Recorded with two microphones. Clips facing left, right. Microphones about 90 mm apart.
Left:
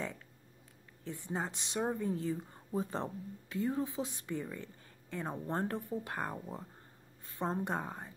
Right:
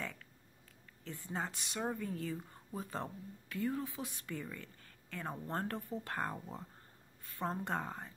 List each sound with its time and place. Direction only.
1.0 s speech: 20° left (ahead or behind)